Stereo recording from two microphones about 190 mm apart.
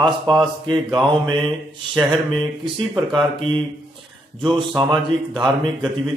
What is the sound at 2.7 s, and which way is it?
Speech, 25° right (ahead or behind).